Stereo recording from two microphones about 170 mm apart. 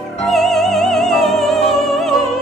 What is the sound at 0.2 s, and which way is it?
Music, centre (ahead or behind).